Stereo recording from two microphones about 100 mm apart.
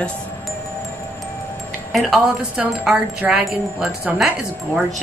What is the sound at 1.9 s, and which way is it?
A woman's voice, centre (ahead or behind).